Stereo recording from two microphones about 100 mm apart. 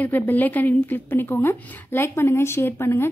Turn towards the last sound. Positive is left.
turn(degrees=25)  # may be behind; listen again after turning